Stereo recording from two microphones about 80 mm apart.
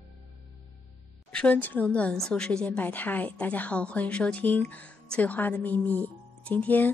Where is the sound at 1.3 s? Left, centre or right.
Centre.